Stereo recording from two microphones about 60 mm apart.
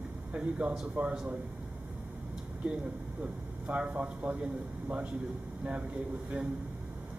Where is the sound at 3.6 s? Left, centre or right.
Right.